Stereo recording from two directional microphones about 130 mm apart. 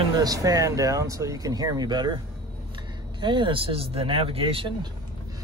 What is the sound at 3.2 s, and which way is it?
Speech, 40° right (ahead or behind).